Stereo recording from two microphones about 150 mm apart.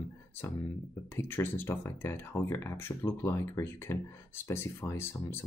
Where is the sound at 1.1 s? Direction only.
15° left (ahead or behind).